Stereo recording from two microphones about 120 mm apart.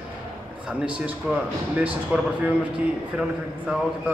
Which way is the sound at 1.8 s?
10° right (ahead or behind).